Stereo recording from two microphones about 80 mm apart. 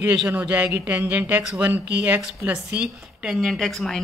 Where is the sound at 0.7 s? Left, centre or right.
Right.